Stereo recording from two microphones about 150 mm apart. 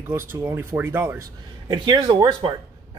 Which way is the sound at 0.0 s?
15° right (ahead or behind).